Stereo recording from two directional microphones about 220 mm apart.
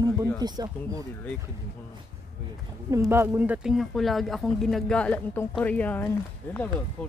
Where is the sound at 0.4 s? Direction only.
20° right (ahead or behind).